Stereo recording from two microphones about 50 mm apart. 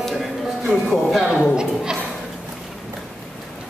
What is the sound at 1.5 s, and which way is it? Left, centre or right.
Speech, centre.